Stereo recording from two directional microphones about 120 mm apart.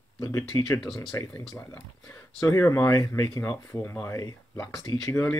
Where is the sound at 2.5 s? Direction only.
25° left (ahead or behind).